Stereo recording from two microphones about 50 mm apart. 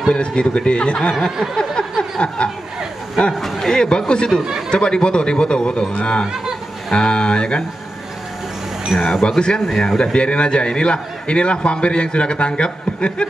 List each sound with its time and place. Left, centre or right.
0.1 s a man's voice: centre
1.2 s a sound: centre
2.1 s a man's voice: left
3.3 s a man's voice: centre
9.0 s a man's voice: centre